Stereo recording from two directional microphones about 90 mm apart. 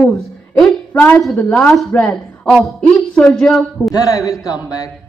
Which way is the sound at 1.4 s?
5° left (ahead or behind).